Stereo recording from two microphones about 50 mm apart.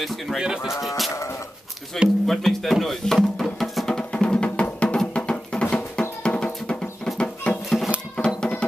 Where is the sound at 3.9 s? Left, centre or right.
Centre.